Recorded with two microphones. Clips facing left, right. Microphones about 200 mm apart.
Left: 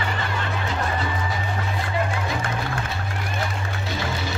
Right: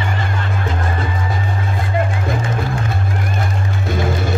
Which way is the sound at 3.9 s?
50° right (ahead or behind).